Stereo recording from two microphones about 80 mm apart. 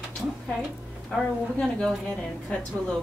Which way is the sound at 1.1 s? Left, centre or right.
Centre.